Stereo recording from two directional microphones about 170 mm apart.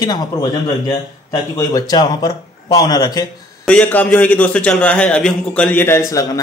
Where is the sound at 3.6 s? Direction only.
5° left (ahead or behind).